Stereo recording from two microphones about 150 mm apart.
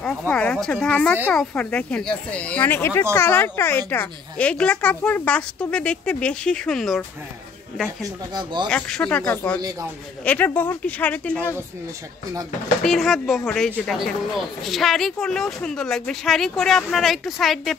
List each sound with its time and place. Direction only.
0.3 s speech: 5° left (ahead or behind)
8.0 s speech: 30° right (ahead or behind)
8.6 s speech: 5° left (ahead or behind)
9.6 s speech: 25° right (ahead or behind)
10.2 s speech: 10° left (ahead or behind)
12.8 s speech: centre (ahead or behind)